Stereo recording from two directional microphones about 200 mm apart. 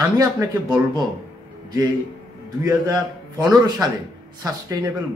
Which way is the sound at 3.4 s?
15° right (ahead or behind).